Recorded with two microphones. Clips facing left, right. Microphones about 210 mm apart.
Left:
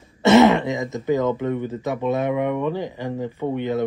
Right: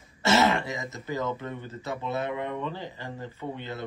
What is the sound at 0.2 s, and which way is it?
Speech, 20° left (ahead or behind).